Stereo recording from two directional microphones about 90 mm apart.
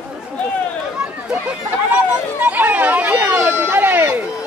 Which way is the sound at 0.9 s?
10° right (ahead or behind).